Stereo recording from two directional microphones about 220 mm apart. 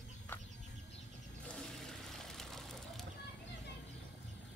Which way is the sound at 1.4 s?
5° left (ahead or behind).